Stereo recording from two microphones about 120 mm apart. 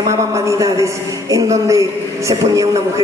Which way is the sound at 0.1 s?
30° right (ahead or behind).